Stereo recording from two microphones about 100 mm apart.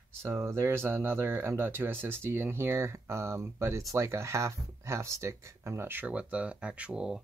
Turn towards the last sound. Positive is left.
turn(degrees=-10)  # may be behind; listen again after turning